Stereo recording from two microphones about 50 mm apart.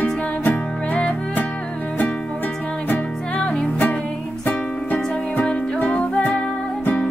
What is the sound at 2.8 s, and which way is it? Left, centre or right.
Music, left.